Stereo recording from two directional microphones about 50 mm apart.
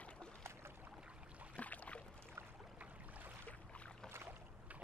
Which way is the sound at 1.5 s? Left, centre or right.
Left.